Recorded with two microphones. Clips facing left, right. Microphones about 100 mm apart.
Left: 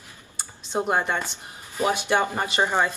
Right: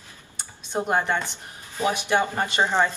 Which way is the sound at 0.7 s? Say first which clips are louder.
Even; 15° left (ahead or behind).